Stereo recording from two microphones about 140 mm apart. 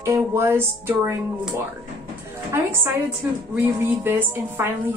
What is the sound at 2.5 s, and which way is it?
Speech, 15° right (ahead or behind).